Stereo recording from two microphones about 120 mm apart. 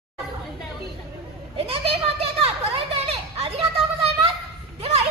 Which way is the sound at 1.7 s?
50° right (ahead or behind).